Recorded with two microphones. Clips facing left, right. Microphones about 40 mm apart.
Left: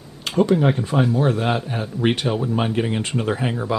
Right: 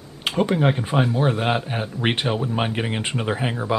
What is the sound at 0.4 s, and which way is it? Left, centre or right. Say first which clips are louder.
Speech: left 3 dB; right.